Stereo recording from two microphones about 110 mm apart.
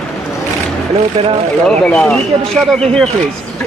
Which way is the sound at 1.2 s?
70° right (ahead or behind).